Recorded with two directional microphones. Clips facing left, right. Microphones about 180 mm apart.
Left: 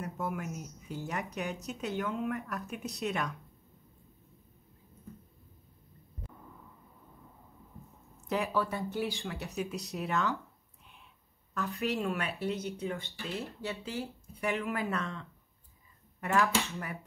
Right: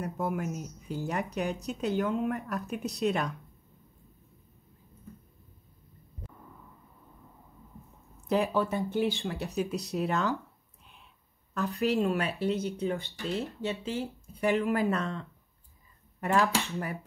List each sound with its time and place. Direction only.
0.0 s speech: 35° right (ahead or behind)
8.5 s speech: 20° right (ahead or behind)
9.2 s speech: 35° right (ahead or behind)
11.5 s speech: 35° right (ahead or behind)
13.6 s speech: 20° right (ahead or behind)
14.4 s speech: 35° right (ahead or behind)